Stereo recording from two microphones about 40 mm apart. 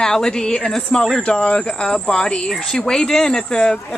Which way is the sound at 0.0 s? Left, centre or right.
Centre.